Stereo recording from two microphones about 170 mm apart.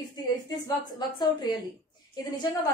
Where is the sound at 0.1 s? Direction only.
20° left (ahead or behind).